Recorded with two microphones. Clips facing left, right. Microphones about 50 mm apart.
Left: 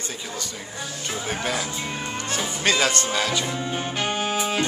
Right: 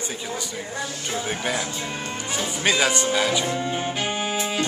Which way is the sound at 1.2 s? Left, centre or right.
Centre.